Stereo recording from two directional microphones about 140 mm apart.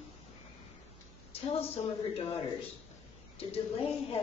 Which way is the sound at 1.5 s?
45° left (ahead or behind).